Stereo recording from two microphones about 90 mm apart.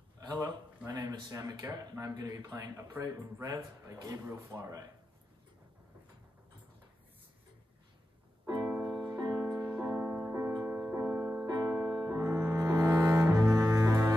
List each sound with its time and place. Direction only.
0.3 s speech: 55° right (ahead or behind)
8.6 s music: 15° right (ahead or behind)
9.1 s music: 40° right (ahead or behind)
9.8 s music: 30° right (ahead or behind)
11.4 s keyboard: 45° right (ahead or behind)
11.8 s music: 40° right (ahead or behind)
12.3 s cello: 30° right (ahead or behind)